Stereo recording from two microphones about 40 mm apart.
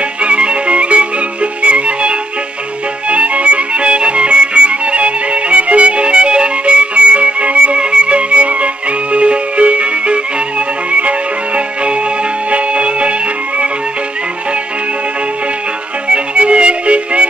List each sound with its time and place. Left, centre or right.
0.2 s music: right
16.1 s music: right